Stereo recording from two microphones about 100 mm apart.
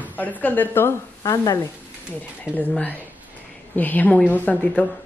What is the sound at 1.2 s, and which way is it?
Speech, 35° left (ahead or behind).